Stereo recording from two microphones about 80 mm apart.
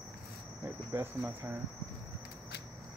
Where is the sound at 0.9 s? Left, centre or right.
Right.